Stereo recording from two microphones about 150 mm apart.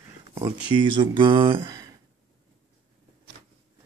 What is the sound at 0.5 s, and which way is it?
Speech, 30° right (ahead or behind).